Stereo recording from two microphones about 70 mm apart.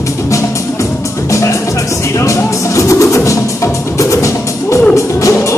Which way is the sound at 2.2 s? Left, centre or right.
Left.